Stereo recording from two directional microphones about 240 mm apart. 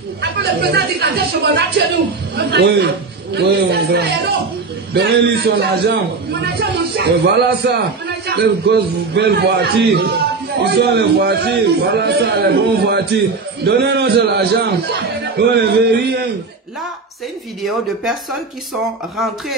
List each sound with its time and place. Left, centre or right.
0.2 s a man's voice: right
17.6 s speech: centre